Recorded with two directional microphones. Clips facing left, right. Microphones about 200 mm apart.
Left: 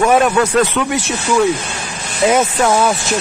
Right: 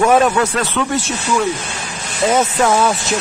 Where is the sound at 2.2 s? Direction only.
10° left (ahead or behind).